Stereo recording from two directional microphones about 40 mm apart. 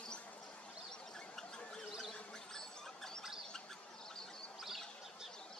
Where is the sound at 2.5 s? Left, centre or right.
Centre.